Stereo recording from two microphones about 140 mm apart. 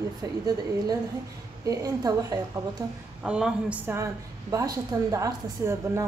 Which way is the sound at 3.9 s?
25° right (ahead or behind).